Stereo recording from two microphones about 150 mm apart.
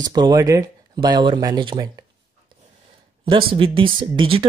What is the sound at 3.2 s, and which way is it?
Speech, 35° right (ahead or behind).